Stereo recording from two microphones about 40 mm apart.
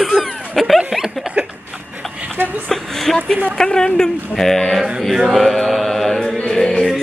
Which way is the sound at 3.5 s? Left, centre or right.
Centre.